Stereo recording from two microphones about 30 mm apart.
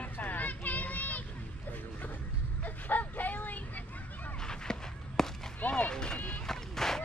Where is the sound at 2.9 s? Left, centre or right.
Left.